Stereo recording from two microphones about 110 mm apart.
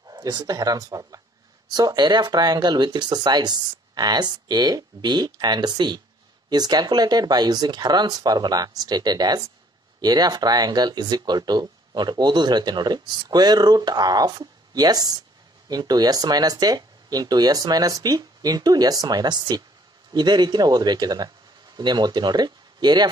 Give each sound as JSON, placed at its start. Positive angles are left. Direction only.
{"t": 0.2, "sound": "speech", "side_deg": -40}